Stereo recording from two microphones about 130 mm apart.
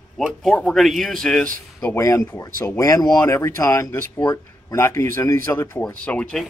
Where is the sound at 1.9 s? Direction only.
25° left (ahead or behind).